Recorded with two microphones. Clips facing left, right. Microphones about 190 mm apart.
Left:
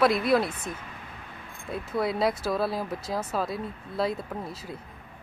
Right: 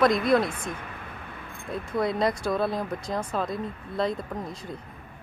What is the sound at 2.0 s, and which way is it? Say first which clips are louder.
Speech: right 1 dB; 5° left (ahead or behind).